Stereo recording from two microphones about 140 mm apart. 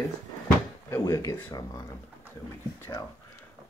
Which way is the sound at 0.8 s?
20° left (ahead or behind).